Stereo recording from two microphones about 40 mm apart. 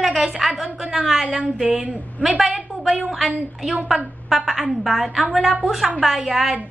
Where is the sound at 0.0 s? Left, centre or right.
Centre.